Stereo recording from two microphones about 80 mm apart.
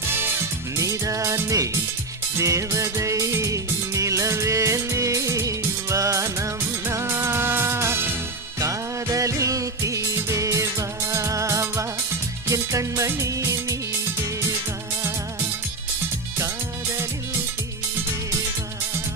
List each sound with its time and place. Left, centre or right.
0.7 s music: right
8.5 s music: right